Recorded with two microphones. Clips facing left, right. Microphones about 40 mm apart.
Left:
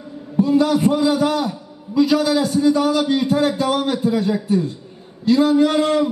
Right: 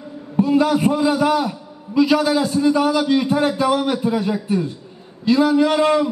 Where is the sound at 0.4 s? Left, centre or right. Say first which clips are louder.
Even; right.